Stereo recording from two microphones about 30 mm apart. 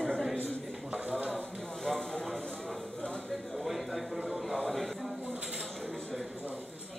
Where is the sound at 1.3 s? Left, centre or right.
Centre.